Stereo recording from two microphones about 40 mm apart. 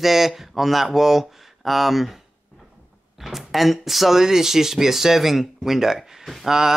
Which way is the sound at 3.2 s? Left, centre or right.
Centre.